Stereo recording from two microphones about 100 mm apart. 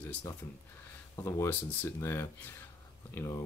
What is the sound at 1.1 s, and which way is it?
Speech, 30° left (ahead or behind).